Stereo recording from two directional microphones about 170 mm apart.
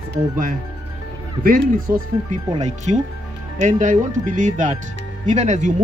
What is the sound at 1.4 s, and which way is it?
Speech, 55° right (ahead or behind).